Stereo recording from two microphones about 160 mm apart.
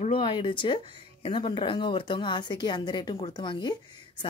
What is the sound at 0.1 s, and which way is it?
A woman's voice, 30° left (ahead or behind).